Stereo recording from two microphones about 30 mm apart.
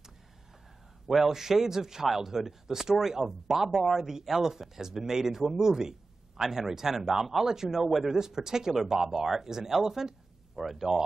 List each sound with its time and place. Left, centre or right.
1.1 s speech: centre